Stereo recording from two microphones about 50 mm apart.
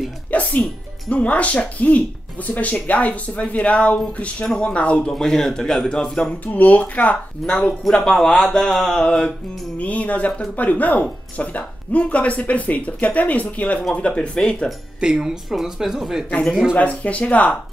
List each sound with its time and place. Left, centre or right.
0.3 s speech: left
5.0 s a man's voice: centre
6.4 s speech: left
7.9 s speech: centre
8.9 s a man's voice: centre
9.8 s speech: left
15.0 s speech: centre
16.7 s speech: left